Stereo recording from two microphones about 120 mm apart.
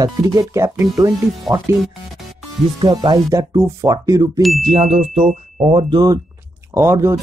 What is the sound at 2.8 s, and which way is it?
Speech, 45° right (ahead or behind).